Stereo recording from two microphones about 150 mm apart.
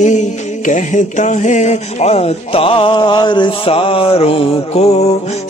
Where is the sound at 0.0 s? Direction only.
50° left (ahead or behind).